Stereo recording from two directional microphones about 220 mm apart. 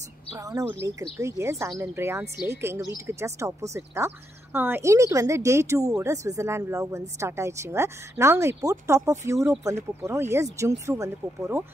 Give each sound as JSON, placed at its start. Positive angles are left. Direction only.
{"t": 0.3, "sound": "a woman's voice", "side_deg": -15}